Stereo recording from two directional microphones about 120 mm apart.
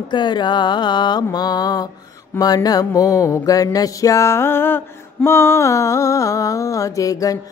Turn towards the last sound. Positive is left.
turn(degrees=30)  # may be behind; listen again after turning